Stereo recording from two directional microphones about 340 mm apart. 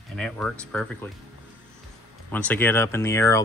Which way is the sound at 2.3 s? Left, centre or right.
Centre.